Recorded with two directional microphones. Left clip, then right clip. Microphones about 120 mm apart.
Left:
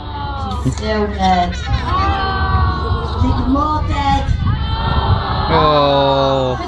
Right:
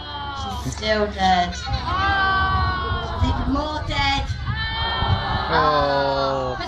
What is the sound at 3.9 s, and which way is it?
Music, centre (ahead or behind).